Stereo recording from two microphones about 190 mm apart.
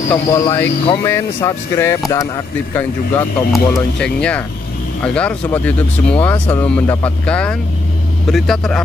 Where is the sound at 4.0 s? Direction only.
5° left (ahead or behind).